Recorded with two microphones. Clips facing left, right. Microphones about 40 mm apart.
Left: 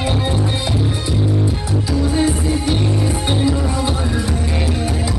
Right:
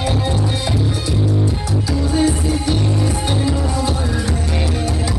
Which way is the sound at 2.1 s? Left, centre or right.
Centre.